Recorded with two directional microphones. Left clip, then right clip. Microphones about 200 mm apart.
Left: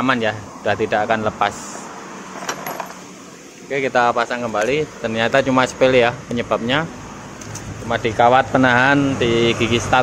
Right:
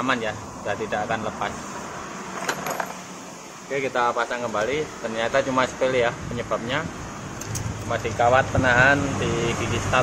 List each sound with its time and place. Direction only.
0.0 s speech: 45° left (ahead or behind)
3.7 s speech: 30° left (ahead or behind)
7.9 s speech: 45° left (ahead or behind)